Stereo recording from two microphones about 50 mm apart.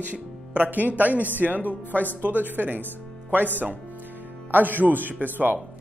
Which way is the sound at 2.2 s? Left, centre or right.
Right.